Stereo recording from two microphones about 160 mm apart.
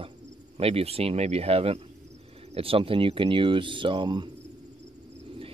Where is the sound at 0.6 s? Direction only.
40° right (ahead or behind).